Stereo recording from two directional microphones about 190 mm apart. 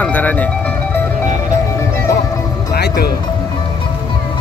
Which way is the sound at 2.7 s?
55° left (ahead or behind).